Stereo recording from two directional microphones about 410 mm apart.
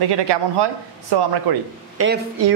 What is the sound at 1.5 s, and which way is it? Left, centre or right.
Speech, right.